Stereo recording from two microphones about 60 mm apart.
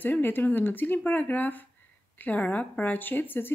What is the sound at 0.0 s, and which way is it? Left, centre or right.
Speech, left.